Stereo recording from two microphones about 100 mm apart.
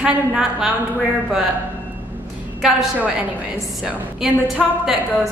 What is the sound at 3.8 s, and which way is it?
A woman's voice, 10° right (ahead or behind).